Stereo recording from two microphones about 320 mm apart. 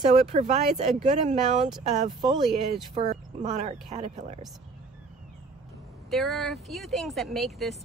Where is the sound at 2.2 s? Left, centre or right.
Centre.